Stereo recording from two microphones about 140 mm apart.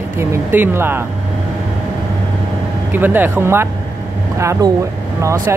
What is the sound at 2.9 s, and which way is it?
Speech, 15° right (ahead or behind).